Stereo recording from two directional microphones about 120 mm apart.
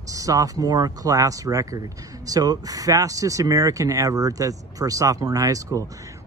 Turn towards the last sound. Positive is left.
turn(degrees=-30)  # may be behind; listen again after turning